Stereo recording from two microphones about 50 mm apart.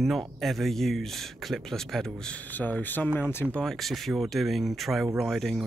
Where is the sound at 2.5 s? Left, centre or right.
Left.